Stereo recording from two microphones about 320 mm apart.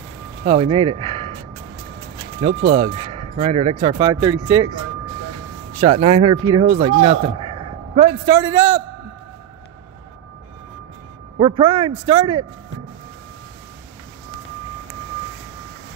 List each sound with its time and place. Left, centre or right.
0.4 s speech: centre
2.4 s speech: centre
5.8 s a man's voice: centre
11.3 s speech: centre